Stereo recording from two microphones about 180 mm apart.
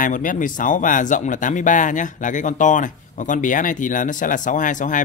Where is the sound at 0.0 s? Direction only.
50° left (ahead or behind).